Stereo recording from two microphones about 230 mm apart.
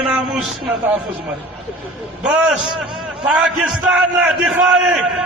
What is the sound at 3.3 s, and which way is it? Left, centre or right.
A man's voice, centre.